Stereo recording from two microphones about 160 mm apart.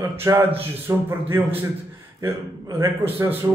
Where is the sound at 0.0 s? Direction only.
15° right (ahead or behind).